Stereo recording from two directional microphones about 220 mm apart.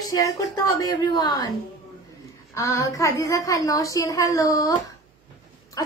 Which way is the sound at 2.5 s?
15° left (ahead or behind).